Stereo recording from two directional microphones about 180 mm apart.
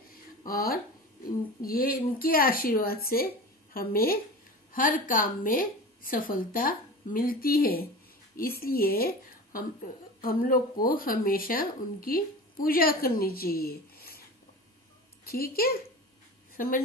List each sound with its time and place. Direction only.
0.5 s a woman's voice: 55° left (ahead or behind)
15.2 s speech: 55° left (ahead or behind)